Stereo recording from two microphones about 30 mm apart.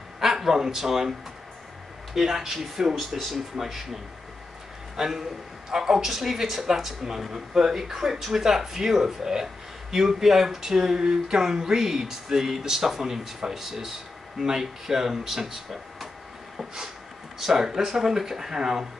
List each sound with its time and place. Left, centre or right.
0.2 s speech: centre
2.1 s speech: centre
3.0 s speech: centre
3.5 s speech: centre
4.9 s a man's voice: centre
17.6 s speech: centre